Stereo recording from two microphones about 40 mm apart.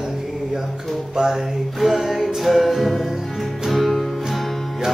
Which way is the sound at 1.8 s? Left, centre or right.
Centre.